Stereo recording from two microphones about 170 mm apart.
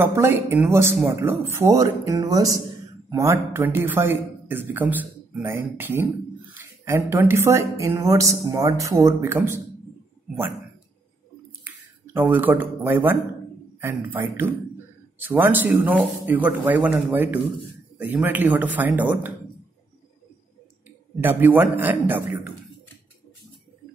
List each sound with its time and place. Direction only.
0.0 s a man's voice: 15° right (ahead or behind)
11.6 s a man's voice: 10° right (ahead or behind)
21.2 s a man's voice: 10° right (ahead or behind)